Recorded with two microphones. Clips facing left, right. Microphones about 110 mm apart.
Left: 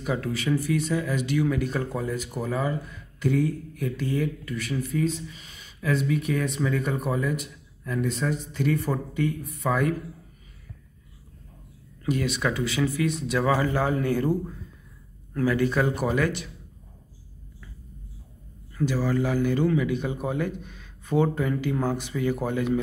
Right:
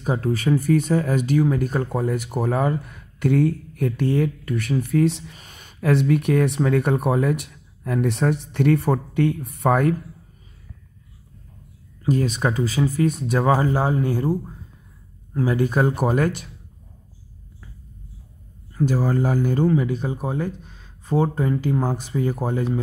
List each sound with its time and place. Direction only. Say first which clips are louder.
0.0 s speech: right 5 dB; 35° right (ahead or behind); by 5.3 s 70° right (ahead or behind)
5.3 s speech: right 2 dB; 50° right (ahead or behind)
12.0 s a man's voice: right 5 dB; 40° right (ahead or behind)
15.3 s speech: right 2 dB; 20° right (ahead or behind)
15.6 s speech: right 3 dB; 45° right (ahead or behind)
18.9 s a man's voice: right 3 dB; 45° right (ahead or behind)